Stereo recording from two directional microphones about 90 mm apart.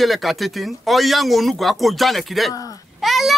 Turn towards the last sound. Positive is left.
turn(degrees=0)  # may be behind; listen again after turning